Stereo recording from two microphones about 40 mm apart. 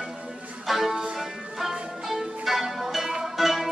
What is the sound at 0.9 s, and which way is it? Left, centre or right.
Music, centre.